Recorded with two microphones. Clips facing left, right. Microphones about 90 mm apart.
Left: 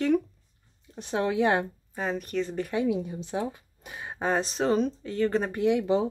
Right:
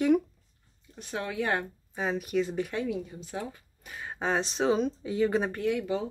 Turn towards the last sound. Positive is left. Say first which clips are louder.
# left 5 dB
turn(degrees=20)  # may be behind; listen again after turning